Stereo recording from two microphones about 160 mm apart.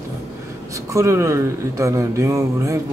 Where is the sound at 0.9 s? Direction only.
15° right (ahead or behind).